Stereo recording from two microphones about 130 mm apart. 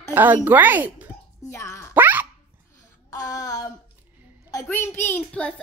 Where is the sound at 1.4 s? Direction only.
25° left (ahead or behind).